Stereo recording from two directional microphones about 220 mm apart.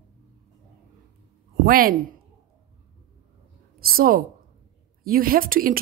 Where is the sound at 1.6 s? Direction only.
40° right (ahead or behind).